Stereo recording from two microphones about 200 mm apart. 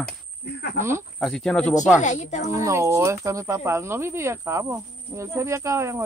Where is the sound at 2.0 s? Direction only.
35° left (ahead or behind).